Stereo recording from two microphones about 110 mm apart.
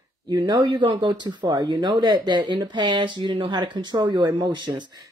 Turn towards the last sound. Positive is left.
turn(degrees=-40)  # may be behind; listen again after turning